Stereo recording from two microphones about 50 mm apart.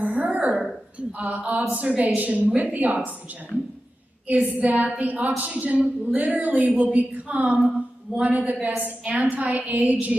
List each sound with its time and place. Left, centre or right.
0.0 s a sound: right
1.7 s speech: right
3.5 s speech: centre
4.3 s speech: right
5.4 s a sound: right
6.1 s speech: right